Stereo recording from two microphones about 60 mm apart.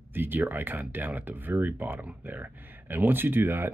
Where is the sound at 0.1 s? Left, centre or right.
Right.